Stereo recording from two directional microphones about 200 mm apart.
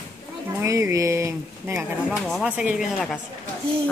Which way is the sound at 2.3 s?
5° right (ahead or behind).